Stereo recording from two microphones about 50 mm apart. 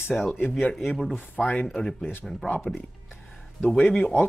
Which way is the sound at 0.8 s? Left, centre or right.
Centre.